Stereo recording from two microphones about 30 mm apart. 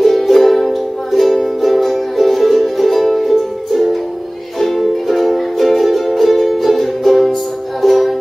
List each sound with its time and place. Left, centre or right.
0.0 s music: centre